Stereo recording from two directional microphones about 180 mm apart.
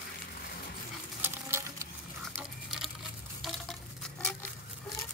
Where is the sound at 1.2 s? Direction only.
15° right (ahead or behind).